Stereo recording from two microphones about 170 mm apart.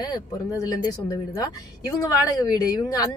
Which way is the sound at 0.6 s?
20° left (ahead or behind).